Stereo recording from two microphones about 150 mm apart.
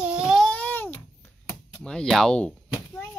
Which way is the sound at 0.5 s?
10° left (ahead or behind).